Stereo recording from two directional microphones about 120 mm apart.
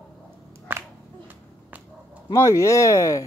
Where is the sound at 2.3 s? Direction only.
25° left (ahead or behind).